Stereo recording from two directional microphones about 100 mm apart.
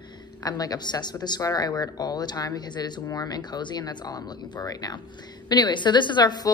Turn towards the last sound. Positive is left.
turn(degrees=45)  # may be behind; listen again after turning